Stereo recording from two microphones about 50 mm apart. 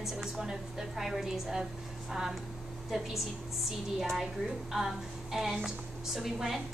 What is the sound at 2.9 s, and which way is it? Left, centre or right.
Speech, centre.